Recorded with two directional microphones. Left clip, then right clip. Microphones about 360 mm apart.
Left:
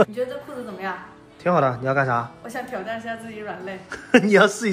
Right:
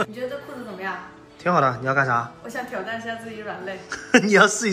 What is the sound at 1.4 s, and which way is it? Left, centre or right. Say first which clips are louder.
A woman's voice: even; centre.